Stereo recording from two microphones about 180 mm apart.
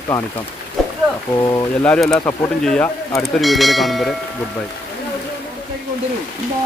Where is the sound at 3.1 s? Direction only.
15° left (ahead or behind).